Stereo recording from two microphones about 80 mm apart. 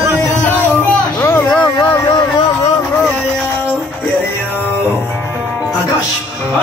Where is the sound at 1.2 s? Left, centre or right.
Left.